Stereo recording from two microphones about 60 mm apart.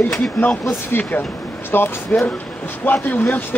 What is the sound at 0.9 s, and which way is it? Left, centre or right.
Speech, left.